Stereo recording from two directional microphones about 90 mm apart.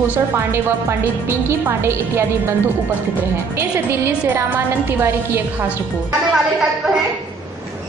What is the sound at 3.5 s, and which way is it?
Speech, 25° right (ahead or behind).